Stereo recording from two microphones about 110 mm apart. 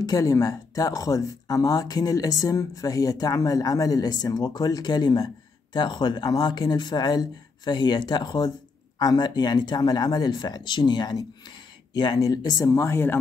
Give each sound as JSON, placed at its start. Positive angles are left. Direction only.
{"t": 0.0, "sound": "speech", "side_deg": 30}